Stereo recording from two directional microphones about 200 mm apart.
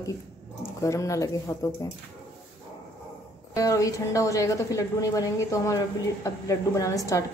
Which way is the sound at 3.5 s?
15° left (ahead or behind).